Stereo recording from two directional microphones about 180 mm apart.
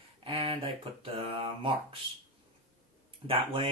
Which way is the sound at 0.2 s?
30° right (ahead or behind).